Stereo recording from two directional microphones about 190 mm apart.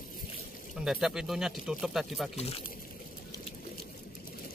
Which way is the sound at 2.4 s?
30° left (ahead or behind).